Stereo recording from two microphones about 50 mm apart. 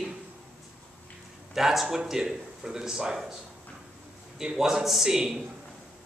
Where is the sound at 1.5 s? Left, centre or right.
Centre.